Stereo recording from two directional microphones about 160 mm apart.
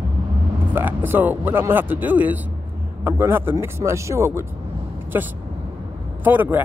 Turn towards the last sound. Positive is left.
turn(degrees=-10)  # may be behind; listen again after turning